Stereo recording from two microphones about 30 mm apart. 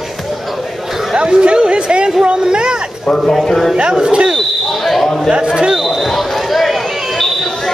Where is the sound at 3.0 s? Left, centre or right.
Left.